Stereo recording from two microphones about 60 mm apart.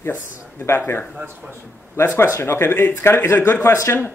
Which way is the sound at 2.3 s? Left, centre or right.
Left.